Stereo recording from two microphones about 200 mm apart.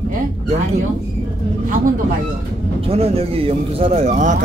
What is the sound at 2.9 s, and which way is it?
Speech, 30° right (ahead or behind).